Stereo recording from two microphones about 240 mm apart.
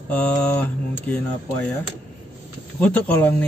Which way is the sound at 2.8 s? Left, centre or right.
Centre.